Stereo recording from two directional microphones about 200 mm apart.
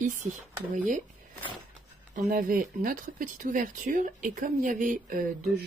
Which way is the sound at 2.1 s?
45° right (ahead or behind).